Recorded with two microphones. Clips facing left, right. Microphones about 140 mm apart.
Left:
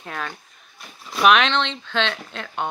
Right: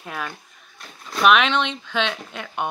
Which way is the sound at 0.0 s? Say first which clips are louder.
Even; 5° right (ahead or behind).